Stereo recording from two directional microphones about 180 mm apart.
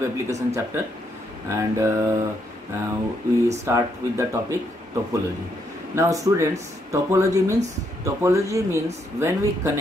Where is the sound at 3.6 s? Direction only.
15° right (ahead or behind).